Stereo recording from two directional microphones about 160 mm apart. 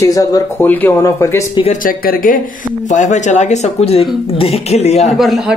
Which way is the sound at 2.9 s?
50° left (ahead or behind).